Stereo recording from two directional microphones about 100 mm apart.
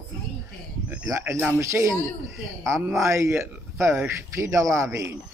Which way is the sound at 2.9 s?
30° right (ahead or behind).